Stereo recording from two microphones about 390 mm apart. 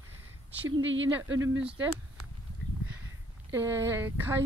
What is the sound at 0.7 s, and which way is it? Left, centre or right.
Speech, right.